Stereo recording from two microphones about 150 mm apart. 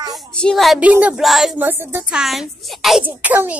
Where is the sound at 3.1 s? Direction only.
10° right (ahead or behind).